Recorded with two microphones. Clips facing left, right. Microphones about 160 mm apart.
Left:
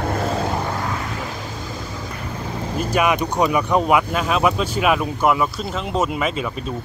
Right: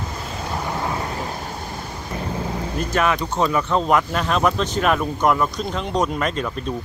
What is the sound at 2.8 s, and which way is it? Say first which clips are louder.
Speech: left 2 dB; 10° left (ahead or behind).